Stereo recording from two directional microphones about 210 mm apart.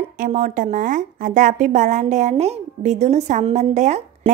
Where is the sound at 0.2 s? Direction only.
40° right (ahead or behind).